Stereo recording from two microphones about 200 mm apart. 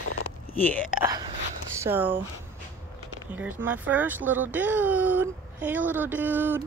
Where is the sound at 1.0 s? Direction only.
20° right (ahead or behind).